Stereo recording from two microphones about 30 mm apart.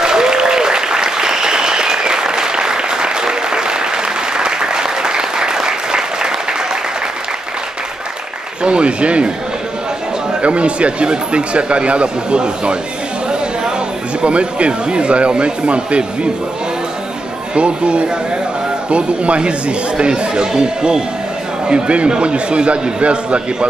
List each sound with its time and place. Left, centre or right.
0.0 s applause: right
8.6 s speech: right
10.4 s speech: right
14.2 s speech: right
17.6 s speech: right